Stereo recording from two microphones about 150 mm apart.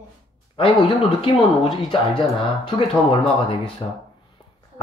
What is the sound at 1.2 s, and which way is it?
Speech, 35° left (ahead or behind).